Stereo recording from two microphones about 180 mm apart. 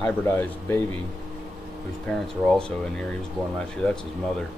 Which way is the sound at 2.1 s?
5° left (ahead or behind).